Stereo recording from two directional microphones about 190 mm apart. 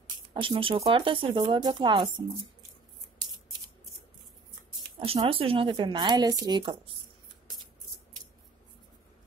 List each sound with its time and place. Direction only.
0.3 s speech: 25° right (ahead or behind)
4.9 s speech: 30° right (ahead or behind)